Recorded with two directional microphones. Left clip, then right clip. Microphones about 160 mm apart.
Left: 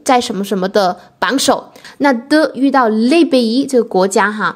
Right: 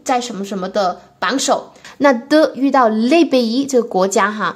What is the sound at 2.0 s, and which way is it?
A woman's voice, 10° left (ahead or behind).